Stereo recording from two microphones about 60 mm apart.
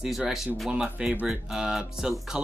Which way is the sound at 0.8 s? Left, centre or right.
Right.